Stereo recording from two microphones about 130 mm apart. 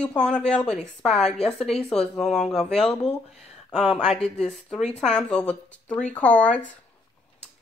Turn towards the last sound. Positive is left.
turn(degrees=10)  # may be behind; listen again after turning